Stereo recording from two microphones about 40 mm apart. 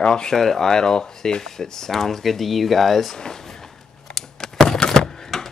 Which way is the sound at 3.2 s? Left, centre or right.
Centre.